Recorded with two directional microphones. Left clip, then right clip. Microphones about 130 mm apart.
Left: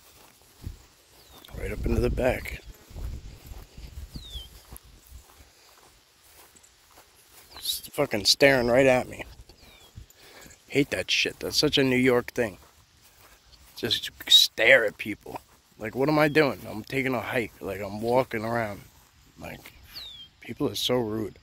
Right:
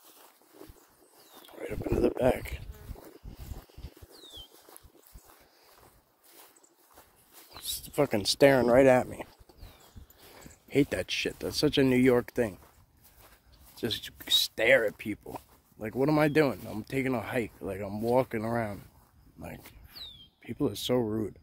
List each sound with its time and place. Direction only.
1.7 s speech: 25° right (ahead or behind)
7.6 s a sound: centre (ahead or behind)
7.9 s speech: 35° right (ahead or behind); by 8.7 s 20° right (ahead or behind)
8.7 s speech: centre (ahead or behind)
10.7 s speech: 20° right (ahead or behind)
13.7 s speech: 10° right (ahead or behind)
17.8 s speech: 10° right (ahead or behind)
19.4 s a sound: 5° right (ahead or behind)
20.9 s speech: 5° right (ahead or behind)